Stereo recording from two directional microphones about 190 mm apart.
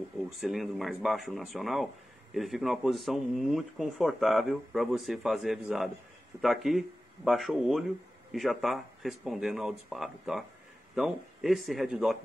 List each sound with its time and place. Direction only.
0.4 s speech: centre (ahead or behind)